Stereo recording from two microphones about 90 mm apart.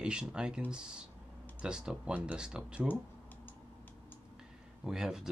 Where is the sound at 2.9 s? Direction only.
20° left (ahead or behind).